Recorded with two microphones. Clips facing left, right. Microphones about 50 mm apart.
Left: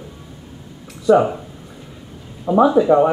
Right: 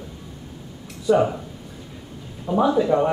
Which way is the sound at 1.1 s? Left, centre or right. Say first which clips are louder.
Left 4 dB; centre.